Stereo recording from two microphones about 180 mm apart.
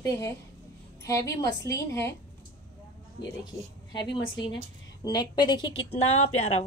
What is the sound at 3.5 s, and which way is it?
A woman's voice, 15° left (ahead or behind).